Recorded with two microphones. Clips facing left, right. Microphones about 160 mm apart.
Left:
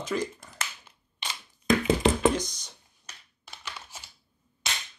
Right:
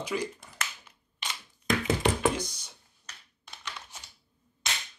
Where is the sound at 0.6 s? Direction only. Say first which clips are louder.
Left 1 dB; 30° left (ahead or behind).